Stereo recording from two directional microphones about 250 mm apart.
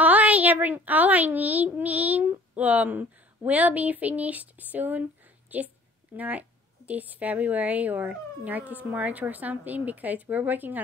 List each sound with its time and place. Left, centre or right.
0.0 s speech: centre